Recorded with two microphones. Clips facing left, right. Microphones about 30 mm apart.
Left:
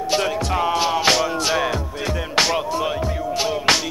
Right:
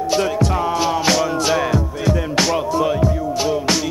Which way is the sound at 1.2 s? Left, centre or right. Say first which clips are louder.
Right 2 dB; centre.